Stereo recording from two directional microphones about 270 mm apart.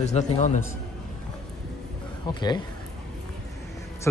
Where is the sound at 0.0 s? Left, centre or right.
Left.